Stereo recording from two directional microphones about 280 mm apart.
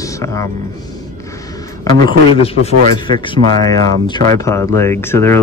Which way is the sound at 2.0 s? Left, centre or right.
Left.